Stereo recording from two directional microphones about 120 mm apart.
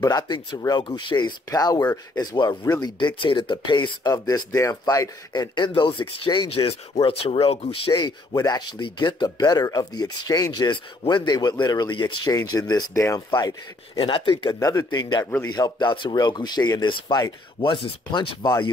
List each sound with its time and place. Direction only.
0.0 s speech: 35° left (ahead or behind)
13.9 s speech: 45° left (ahead or behind)
14.6 s speech: 30° left (ahead or behind)